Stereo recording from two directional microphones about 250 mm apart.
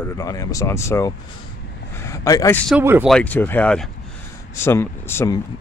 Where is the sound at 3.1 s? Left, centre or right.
Centre.